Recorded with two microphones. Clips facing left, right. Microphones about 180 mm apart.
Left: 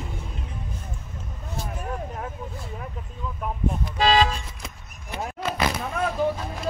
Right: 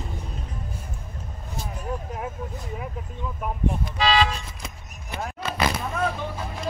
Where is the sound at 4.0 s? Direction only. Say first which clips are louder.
Left 2 dB; 45° left (ahead or behind).